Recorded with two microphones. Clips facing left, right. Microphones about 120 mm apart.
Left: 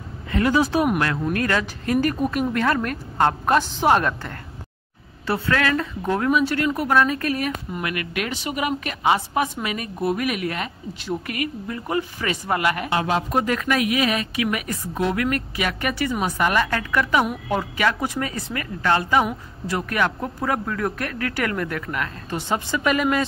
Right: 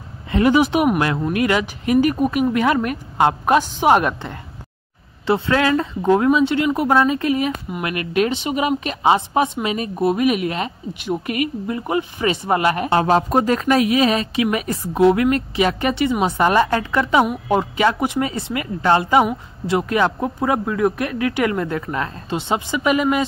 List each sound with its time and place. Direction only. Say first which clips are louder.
0.3 s speech: right 4 dB; 20° right (ahead or behind)